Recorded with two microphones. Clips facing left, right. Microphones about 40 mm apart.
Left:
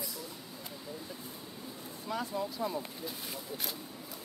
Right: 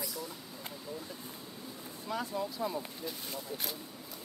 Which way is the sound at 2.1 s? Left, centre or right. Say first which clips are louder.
Even; centre.